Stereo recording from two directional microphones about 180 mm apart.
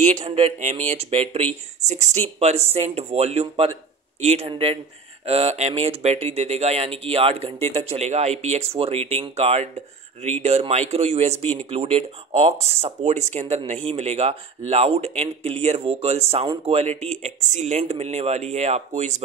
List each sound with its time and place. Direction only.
0.0 s speech: 35° right (ahead or behind)